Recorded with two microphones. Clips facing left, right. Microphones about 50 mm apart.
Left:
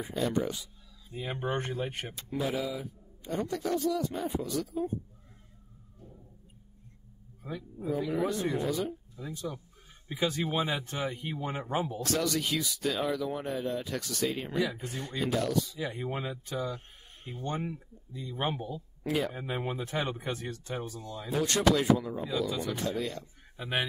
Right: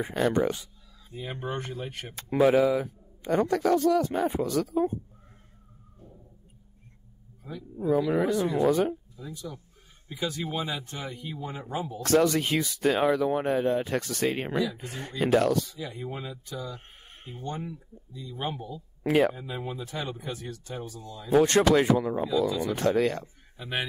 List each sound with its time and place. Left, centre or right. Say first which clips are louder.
0.0 s speech: right 5 dB; right
1.2 s speech: left 1 dB; centre
2.3 s a man's voice: right 11 dB; right
7.4 s speech: left 1 dB; left
7.9 s speech: right 6 dB; right
9.3 s speech: left 2 dB; left
10.0 s speech: left 1 dB; left
12.0 s speech: right 7 dB; right
15.8 s speech: left 2 dB; left
19.0 s speech: right 8 dB; right
19.3 s speech: left 1 dB; left
21.3 s speech: right 6 dB; right
22.8 s a man's voice: right 9 dB; right